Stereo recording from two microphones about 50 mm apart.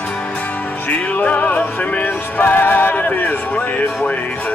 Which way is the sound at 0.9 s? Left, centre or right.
Left.